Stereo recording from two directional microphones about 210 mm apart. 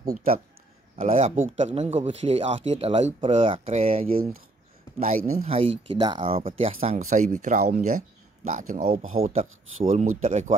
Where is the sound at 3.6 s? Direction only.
35° right (ahead or behind).